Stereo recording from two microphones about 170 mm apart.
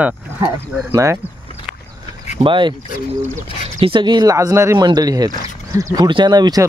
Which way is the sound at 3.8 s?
30° right (ahead or behind).